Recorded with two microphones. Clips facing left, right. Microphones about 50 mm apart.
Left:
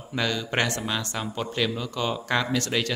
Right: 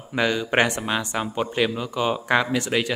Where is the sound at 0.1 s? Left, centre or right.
Centre.